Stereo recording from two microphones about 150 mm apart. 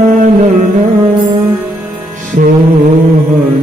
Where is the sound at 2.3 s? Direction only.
60° right (ahead or behind).